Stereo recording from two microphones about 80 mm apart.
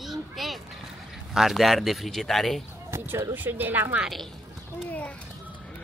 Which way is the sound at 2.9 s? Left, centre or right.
Right.